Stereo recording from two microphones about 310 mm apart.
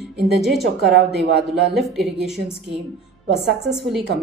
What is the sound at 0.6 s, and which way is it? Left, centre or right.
Speech, right.